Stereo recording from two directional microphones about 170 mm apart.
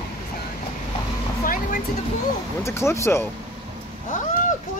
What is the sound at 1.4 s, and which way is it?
Vehicle, 55° left (ahead or behind).